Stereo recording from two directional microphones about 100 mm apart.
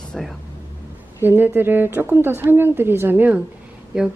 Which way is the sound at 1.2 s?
20° right (ahead or behind).